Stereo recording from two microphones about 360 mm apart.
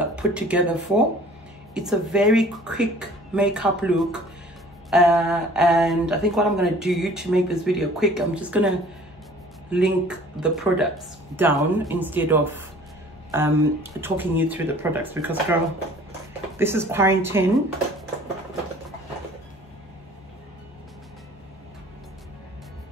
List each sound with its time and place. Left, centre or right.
0.0 s a woman's voice: centre
16.5 s a woman's voice: centre